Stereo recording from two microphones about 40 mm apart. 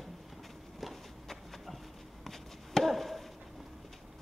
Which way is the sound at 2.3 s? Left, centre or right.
Centre.